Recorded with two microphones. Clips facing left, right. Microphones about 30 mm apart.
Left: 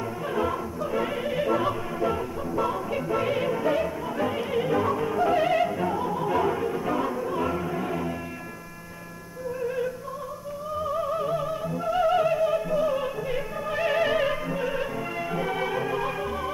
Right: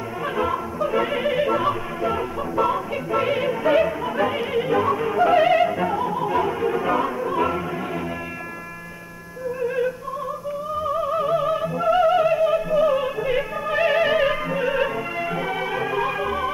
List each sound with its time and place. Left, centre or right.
0.4 s music: right
6.6 s music: right
10.8 s music: centre
12.0 s music: centre